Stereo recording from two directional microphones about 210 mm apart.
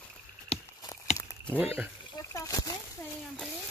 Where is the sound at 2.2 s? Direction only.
15° left (ahead or behind).